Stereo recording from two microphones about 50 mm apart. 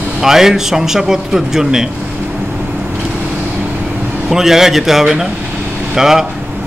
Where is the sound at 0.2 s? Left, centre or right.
Centre.